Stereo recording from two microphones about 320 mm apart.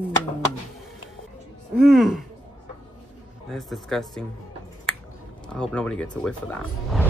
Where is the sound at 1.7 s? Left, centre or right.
Centre.